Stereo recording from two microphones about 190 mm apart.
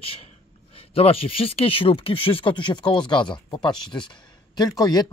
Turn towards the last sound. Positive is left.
turn(degrees=20)  # may be behind; listen again after turning